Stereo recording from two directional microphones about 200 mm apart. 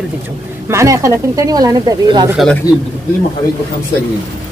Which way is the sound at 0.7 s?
15° right (ahead or behind).